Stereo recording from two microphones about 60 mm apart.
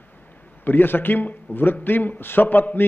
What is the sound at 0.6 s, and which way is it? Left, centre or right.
A man's voice, left.